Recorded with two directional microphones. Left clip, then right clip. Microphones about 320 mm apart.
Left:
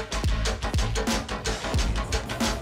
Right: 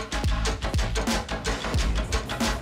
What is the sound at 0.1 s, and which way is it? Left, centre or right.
Music, centre.